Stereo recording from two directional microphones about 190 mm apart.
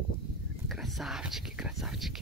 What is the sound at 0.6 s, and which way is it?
Whispering, centre (ahead or behind).